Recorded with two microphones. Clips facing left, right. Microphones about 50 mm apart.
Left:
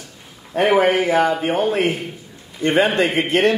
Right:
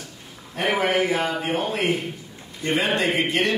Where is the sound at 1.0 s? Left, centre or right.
Left.